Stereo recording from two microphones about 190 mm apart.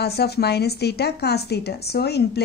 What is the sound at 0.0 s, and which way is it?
A woman's voice, 60° left (ahead or behind).